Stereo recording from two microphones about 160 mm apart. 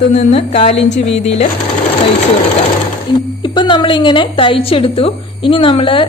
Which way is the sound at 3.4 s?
30° left (ahead or behind).